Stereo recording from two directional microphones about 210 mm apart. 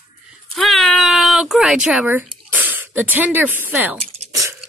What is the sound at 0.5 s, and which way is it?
Speech, centre (ahead or behind).